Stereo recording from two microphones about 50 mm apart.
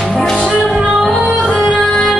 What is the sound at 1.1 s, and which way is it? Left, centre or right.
Music, centre.